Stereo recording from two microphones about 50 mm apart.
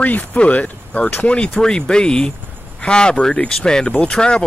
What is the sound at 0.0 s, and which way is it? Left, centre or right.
Speech, left.